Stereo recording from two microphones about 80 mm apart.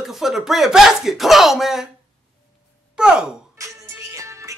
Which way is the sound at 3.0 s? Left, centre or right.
Centre.